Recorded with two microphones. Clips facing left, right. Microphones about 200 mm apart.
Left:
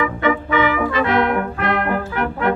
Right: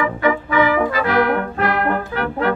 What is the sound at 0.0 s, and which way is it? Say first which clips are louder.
Brass instrument: even; 25° left (ahead or behind).